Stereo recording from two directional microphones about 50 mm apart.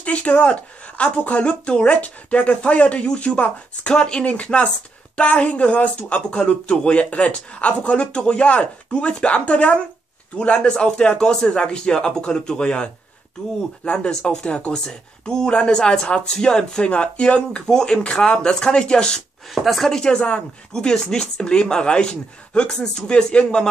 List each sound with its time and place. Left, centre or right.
0.0 s speech: left
19.5 s speech: centre
19.9 s speech: centre